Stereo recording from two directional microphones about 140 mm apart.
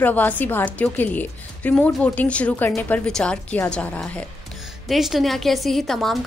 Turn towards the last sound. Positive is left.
turn(degrees=5)  # may be behind; listen again after turning